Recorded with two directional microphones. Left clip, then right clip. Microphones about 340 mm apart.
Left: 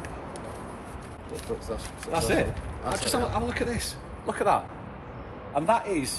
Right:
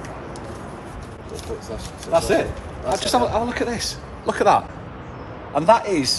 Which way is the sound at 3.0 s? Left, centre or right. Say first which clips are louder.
Right 9 dB; centre.